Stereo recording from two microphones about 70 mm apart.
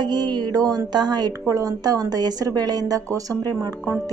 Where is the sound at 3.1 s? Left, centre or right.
Right.